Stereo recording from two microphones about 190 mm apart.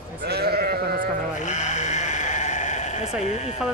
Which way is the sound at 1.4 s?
40° left (ahead or behind).